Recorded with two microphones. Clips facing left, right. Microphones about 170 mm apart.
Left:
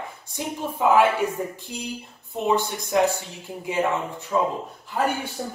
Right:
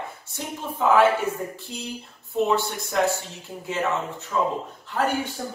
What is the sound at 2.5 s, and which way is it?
Speech, 15° left (ahead or behind).